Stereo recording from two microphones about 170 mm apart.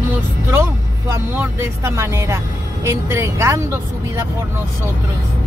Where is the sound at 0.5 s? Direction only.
15° right (ahead or behind).